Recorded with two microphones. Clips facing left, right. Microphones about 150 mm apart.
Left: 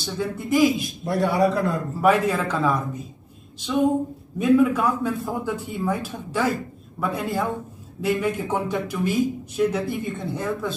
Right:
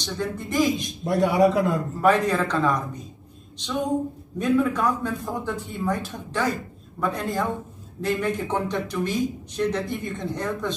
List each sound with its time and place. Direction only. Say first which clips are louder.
0.0 s speech: left 1 dB; 5° left (ahead or behind)
1.0 s a man's voice: right 2 dB; 20° right (ahead or behind)
1.7 s speech: left 1 dB; 5° left (ahead or behind)
4.4 s speech: left 4 dB; 10° left (ahead or behind)